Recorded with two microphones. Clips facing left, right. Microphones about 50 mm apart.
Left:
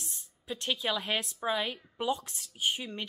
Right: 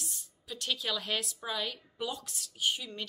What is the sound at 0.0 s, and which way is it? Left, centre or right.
A woman's voice, left.